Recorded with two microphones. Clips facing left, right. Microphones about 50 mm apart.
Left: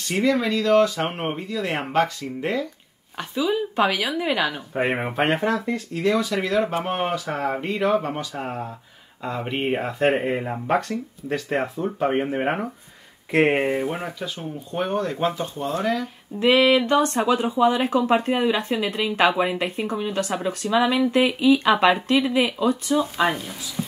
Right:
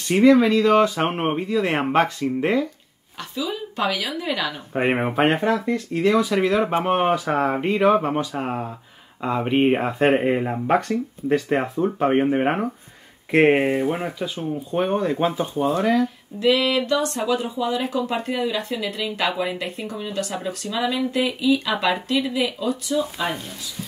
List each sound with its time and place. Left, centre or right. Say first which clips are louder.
0.1 s speech: right 6 dB; centre
3.3 s a woman's voice: left 5 dB; left
4.8 s speech: right 3 dB; centre
16.3 s speech: left 2 dB; left